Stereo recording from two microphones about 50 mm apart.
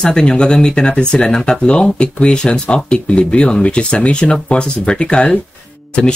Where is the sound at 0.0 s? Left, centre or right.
Centre.